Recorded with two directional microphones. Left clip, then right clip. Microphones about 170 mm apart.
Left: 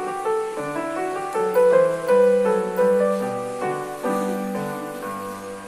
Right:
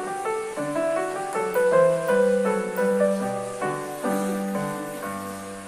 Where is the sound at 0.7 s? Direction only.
25° left (ahead or behind).